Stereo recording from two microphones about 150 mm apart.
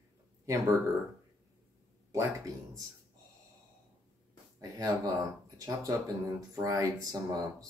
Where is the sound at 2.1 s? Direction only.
20° right (ahead or behind).